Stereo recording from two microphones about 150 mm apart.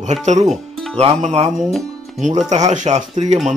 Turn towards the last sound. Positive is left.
turn(degrees=-50)  # may be behind; listen again after turning